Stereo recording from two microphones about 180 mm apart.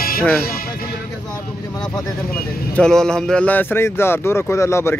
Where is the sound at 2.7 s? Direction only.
5° left (ahead or behind).